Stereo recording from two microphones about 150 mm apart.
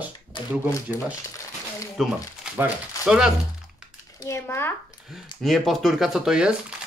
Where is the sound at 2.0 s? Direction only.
Centre (ahead or behind).